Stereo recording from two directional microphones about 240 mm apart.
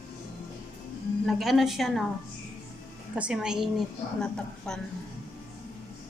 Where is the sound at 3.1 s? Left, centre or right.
Centre.